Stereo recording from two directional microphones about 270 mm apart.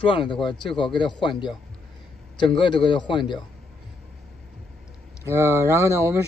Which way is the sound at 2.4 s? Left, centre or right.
Centre.